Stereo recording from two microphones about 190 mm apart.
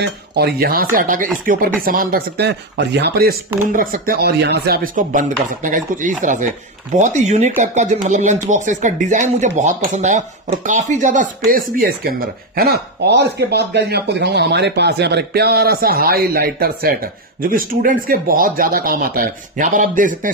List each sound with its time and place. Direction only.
0.0 s speech: 60° right (ahead or behind)